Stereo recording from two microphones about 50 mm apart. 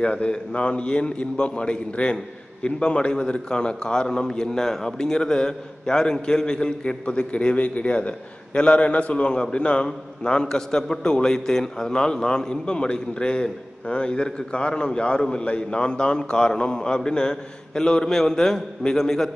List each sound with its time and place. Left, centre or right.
0.0 s a man's voice: left